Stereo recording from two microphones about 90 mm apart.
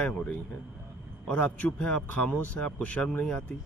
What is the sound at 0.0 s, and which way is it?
A man's voice, 15° left (ahead or behind).